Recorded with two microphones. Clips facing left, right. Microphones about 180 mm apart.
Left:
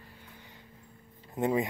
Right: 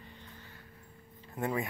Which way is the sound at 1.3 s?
20° left (ahead or behind).